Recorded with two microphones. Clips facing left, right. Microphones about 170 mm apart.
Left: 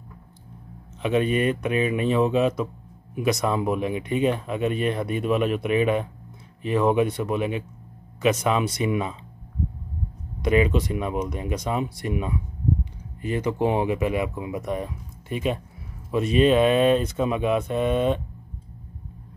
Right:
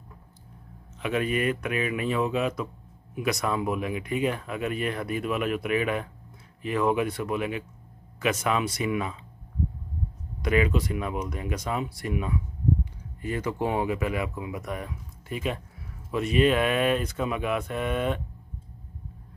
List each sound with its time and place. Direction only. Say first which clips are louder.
1.0 s speech: left 4 dB; 25° left (ahead or behind)
10.4 s speech: left 4 dB; 20° left (ahead or behind)